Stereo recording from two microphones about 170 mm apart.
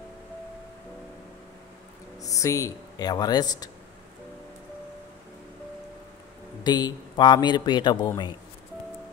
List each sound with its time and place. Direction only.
2.2 s speech: 20° left (ahead or behind)
6.6 s a man's voice: 25° left (ahead or behind)